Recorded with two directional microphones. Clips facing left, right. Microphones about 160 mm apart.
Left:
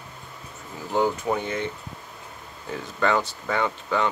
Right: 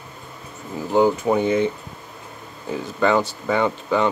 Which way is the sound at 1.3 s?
25° right (ahead or behind).